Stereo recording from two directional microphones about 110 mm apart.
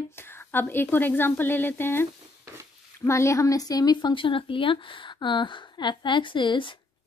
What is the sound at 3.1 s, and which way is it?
Speech, 25° left (ahead or behind).